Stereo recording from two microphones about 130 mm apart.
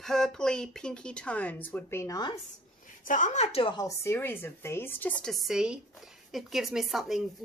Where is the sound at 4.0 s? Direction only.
20° left (ahead or behind).